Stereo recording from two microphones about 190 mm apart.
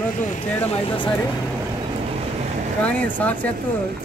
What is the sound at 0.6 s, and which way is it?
Speech, 30° left (ahead or behind).